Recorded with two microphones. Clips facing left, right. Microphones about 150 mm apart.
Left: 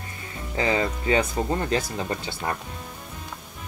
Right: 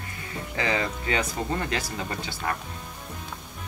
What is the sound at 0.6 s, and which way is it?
Speech, 25° left (ahead or behind).